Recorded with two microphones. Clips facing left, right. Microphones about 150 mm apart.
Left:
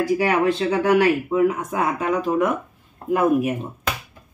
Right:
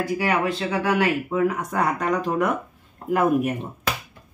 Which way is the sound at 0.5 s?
20° left (ahead or behind).